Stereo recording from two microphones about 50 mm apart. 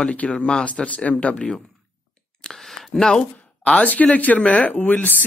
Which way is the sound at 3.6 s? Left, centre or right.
Left.